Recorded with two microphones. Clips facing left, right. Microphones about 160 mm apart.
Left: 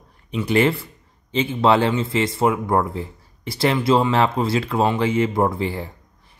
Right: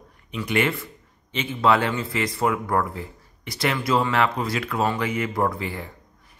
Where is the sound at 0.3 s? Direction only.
30° left (ahead or behind).